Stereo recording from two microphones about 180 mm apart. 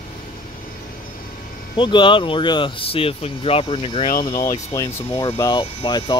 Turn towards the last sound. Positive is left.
turn(degrees=25)  # may be behind; listen again after turning